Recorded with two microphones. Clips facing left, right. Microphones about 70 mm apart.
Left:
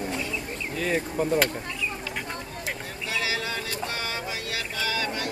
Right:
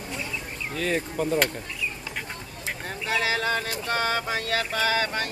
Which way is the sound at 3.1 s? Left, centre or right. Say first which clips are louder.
Right 5 dB; right.